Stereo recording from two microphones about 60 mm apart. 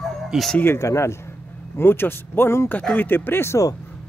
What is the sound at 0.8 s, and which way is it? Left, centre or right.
Speech, left.